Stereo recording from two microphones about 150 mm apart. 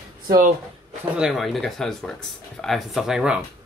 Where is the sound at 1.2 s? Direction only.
Centre (ahead or behind).